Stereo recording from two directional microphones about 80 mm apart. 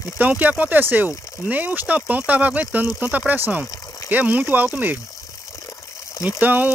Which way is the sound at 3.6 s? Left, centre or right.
Left.